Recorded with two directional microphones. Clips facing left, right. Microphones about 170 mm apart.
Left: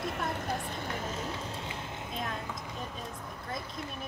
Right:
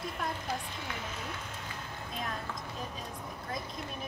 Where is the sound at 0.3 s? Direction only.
50° left (ahead or behind); by 2.0 s 20° left (ahead or behind).